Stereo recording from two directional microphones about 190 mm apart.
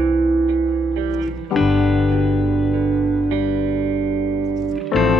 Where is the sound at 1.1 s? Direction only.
Centre (ahead or behind).